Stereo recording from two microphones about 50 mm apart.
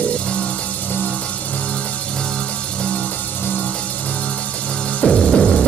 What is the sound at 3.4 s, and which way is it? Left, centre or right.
Music, left.